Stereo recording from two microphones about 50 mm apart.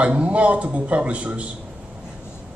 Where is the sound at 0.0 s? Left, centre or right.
Right.